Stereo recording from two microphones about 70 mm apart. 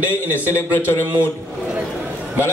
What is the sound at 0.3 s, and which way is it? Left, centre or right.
Speech, left.